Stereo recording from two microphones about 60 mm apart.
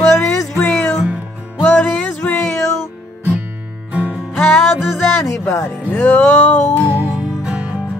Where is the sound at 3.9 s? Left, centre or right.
Right.